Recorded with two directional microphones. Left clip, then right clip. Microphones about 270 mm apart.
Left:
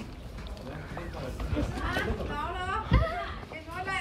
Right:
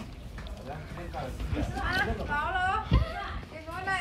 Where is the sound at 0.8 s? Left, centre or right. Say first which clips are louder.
Even; centre.